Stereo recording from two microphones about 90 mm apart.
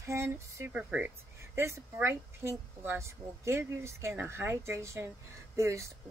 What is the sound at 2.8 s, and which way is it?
Speech, 30° right (ahead or behind).